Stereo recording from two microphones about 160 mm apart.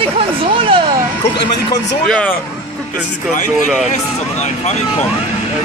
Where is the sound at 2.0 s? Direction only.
5° left (ahead or behind).